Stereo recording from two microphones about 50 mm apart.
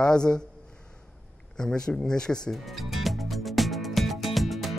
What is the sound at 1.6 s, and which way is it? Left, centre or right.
Speech, centre.